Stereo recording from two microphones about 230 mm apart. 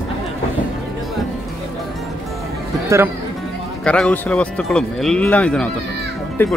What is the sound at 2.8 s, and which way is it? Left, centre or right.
Speech, centre.